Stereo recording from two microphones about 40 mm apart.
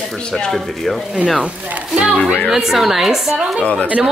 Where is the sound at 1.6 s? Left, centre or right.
Right.